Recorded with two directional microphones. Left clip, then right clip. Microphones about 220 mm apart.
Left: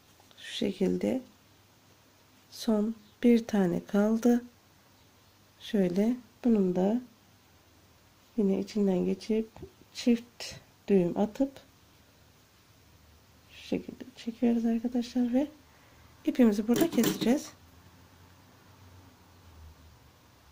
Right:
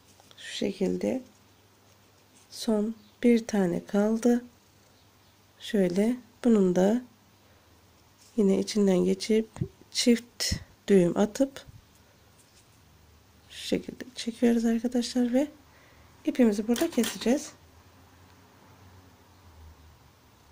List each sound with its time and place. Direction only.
0.3 s speech: centre (ahead or behind)
2.5 s speech: centre (ahead or behind)
5.6 s speech: 5° right (ahead or behind)
6.4 s speech: 25° right (ahead or behind)
8.4 s speech: 20° right (ahead or behind)
13.5 s speech: 25° right (ahead or behind)
16.2 s speech: centre (ahead or behind)